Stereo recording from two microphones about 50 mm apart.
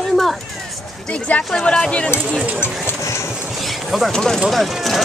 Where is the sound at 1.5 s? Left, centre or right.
Centre.